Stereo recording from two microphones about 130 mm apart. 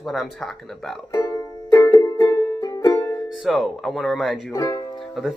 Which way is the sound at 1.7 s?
25° left (ahead or behind).